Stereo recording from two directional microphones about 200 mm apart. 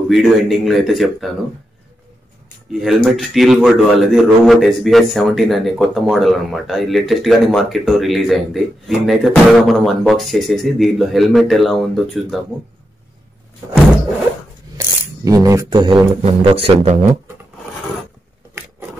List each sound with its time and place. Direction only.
0.1 s speech: centre (ahead or behind)
2.8 s speech: centre (ahead or behind)
14.8 s speech: 15° right (ahead or behind); by 17.0 s 35° right (ahead or behind)